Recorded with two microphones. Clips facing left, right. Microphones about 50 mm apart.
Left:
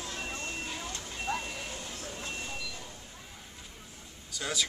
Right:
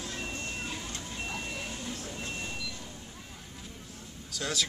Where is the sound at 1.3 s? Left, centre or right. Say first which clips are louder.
Left 7 dB; left.